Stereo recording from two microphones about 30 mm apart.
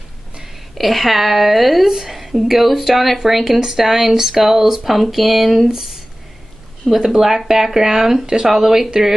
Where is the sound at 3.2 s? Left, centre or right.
Centre.